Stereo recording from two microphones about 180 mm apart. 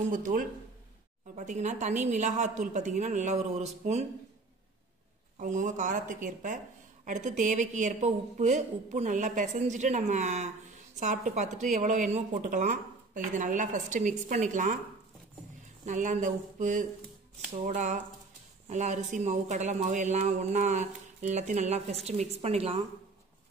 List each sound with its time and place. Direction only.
0.1 s speech: 50° right (ahead or behind)
5.4 s speech: 45° right (ahead or behind)
15.8 s speech: 45° right (ahead or behind)